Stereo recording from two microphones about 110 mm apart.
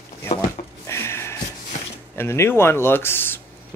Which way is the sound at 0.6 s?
90° left.